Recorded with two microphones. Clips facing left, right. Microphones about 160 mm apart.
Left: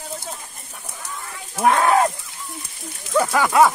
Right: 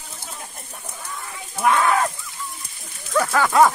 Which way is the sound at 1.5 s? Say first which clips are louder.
Left 2 dB; 45° left (ahead or behind).